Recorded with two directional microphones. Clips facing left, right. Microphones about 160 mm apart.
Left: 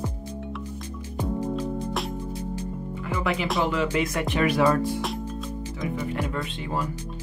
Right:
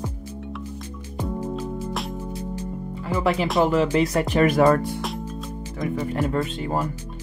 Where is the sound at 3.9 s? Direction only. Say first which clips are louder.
Right 5 dB; 35° right (ahead or behind).